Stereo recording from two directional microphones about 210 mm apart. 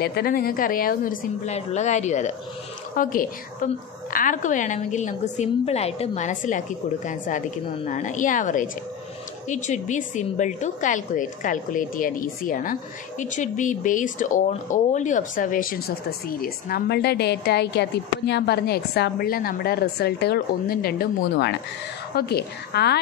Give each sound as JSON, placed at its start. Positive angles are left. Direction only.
{"t": 0.0, "sound": "a woman's voice", "side_deg": 45}